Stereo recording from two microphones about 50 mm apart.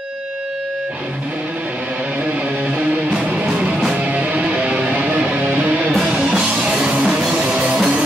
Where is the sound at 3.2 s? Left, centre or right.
Right.